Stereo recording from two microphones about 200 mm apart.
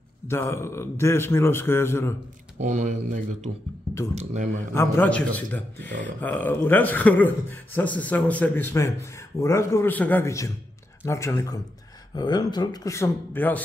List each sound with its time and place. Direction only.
0.3 s a man's voice: 15° left (ahead or behind)
2.6 s speech: 40° right (ahead or behind)
4.7 s a man's voice: 10° left (ahead or behind)